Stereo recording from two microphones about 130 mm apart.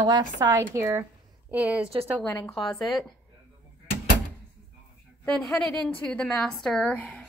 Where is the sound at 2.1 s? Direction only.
10° left (ahead or behind).